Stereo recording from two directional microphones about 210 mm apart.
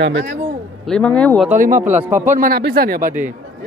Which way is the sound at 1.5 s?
40° right (ahead or behind).